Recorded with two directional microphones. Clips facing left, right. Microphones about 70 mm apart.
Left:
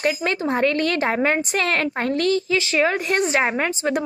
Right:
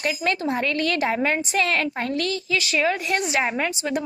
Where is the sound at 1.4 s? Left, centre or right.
Left.